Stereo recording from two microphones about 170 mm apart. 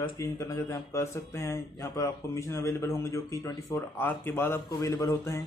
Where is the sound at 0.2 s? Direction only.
20° left (ahead or behind).